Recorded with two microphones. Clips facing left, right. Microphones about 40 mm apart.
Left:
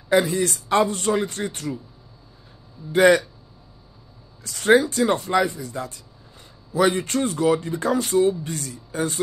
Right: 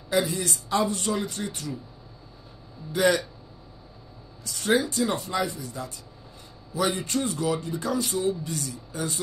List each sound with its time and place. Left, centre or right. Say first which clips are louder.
0.1 s speech: left 6 dB; left
2.9 s speech: left 7 dB; left
4.4 s speech: left 7 dB; left